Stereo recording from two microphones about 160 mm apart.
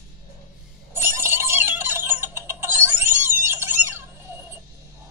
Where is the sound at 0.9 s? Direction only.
15° right (ahead or behind).